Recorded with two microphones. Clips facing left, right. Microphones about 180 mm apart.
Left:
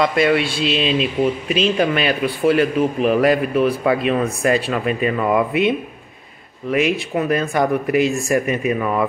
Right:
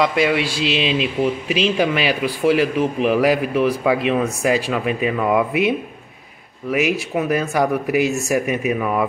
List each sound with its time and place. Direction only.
0.0 s speech: 10° right (ahead or behind)
0.5 s speech: 70° right (ahead or behind)
0.7 s speech: 10° right (ahead or behind)